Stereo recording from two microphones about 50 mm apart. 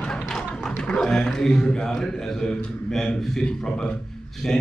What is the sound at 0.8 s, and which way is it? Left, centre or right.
A man's voice, centre.